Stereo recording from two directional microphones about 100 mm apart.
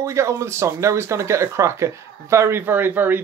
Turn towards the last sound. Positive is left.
turn(degrees=-20)  # may be behind; listen again after turning